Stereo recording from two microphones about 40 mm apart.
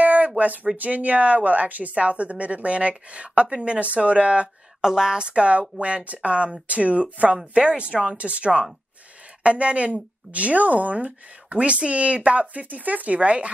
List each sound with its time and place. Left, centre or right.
0.0 s a sound: right
0.7 s speech: right
4.8 s speech: centre; by 13.5 s right